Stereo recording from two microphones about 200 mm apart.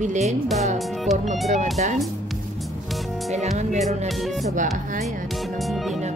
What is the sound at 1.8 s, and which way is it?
Speech, 40° right (ahead or behind).